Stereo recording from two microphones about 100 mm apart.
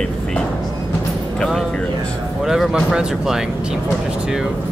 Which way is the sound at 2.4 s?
5° right (ahead or behind).